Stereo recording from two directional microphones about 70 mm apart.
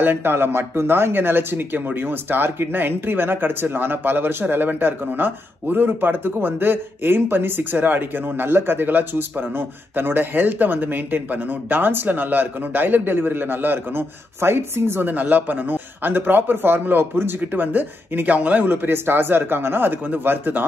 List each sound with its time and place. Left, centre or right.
0.0 s a man's voice: right